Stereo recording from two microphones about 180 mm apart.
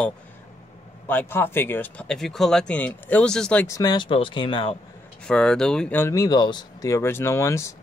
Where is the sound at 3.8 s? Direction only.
25° left (ahead or behind).